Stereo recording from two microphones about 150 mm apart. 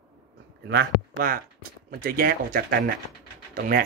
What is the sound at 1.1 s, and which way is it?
Speech, 70° right (ahead or behind).